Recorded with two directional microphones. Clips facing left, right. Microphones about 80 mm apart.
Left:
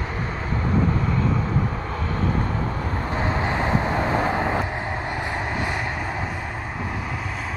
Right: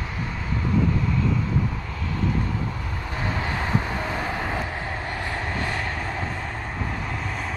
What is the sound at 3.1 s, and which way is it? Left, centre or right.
Vehicle, left.